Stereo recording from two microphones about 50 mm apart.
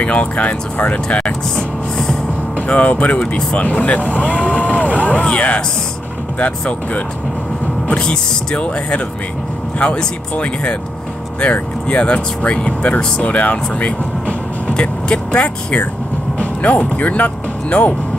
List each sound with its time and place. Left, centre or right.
0.0 s speech: left
2.7 s speech: left
4.4 s boat: left
6.4 s speech: left
7.9 s speech: centre